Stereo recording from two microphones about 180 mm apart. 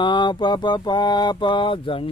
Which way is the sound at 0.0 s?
25° left (ahead or behind).